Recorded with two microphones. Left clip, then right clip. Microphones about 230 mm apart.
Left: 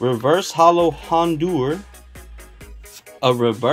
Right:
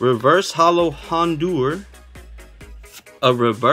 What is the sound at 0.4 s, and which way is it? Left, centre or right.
Speech, centre.